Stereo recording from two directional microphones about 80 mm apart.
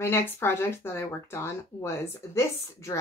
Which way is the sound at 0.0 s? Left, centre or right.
Left.